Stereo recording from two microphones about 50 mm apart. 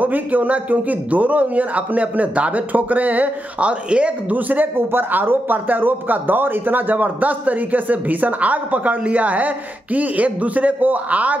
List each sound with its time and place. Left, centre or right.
0.0 s a man's voice: right
4.4 s a man's voice: right